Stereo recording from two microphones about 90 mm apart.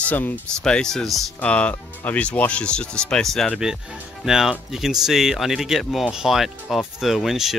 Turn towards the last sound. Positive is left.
turn(degrees=-5)  # may be behind; listen again after turning